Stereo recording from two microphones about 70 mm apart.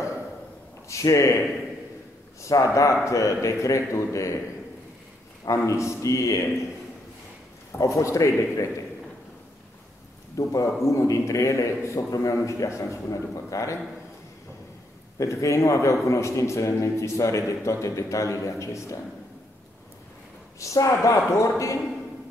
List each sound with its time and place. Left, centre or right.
0.8 s speech: left
2.4 s a man's voice: left
5.7 s a man's voice: left
7.7 s a man's voice: left
10.3 s a man's voice: left
15.1 s a man's voice: left
20.5 s a man's voice: left